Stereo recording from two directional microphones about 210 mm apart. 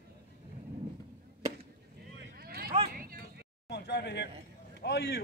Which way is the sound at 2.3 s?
45° right (ahead or behind).